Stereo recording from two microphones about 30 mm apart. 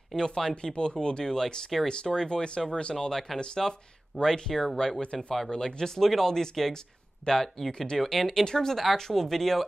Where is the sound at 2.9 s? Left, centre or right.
Centre.